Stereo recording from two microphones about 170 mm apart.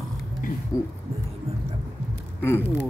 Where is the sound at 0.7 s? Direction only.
20° left (ahead or behind).